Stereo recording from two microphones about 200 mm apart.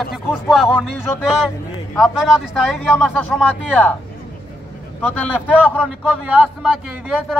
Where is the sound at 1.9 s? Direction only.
Centre (ahead or behind).